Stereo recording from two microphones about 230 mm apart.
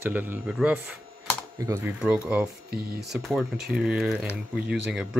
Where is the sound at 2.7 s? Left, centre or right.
Right.